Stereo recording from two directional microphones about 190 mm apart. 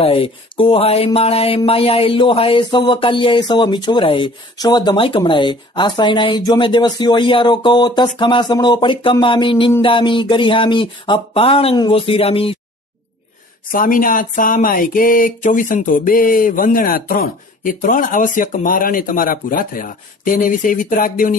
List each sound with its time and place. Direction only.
0.0 s speech: 30° left (ahead or behind)
13.7 s speech: 45° left (ahead or behind)